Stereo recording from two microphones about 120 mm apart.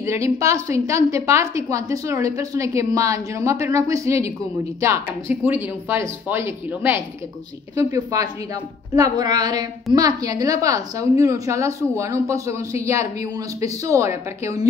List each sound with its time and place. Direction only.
0.0 s a woman's voice: 25° right (ahead or behind)